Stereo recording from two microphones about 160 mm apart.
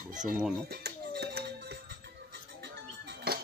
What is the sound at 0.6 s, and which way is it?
Music, 85° right.